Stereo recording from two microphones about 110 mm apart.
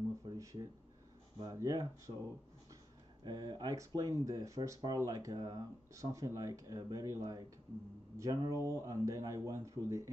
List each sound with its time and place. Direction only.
0.4 s speech: 30° right (ahead or behind)
3.3 s speech: 35° right (ahead or behind)